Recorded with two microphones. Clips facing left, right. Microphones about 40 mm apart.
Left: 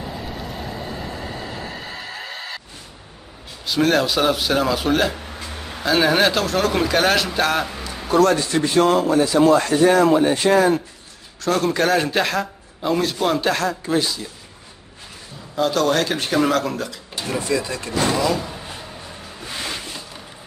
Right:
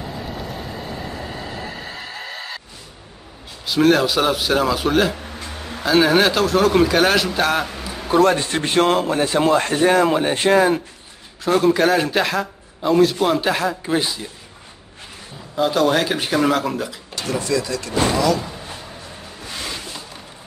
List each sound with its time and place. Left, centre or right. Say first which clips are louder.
3.6 s a man's voice: right 2 dB; centre
8.1 s a man's voice: even; right
15.5 s speech: right 1 dB; centre
17.1 s speech: right 1 dB; left